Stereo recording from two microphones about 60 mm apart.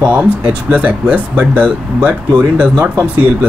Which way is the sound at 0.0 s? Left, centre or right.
Centre.